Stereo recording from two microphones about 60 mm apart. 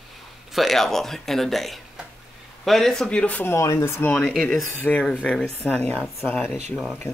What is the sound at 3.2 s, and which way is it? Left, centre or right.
Speech, left.